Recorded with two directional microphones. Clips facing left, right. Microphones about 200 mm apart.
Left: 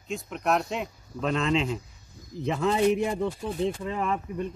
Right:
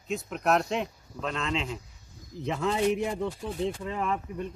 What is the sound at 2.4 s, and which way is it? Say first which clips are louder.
Speech: left 3 dB; 25° left (ahead or behind).